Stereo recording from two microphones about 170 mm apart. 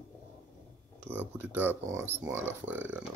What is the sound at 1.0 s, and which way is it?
Speech, 10° right (ahead or behind).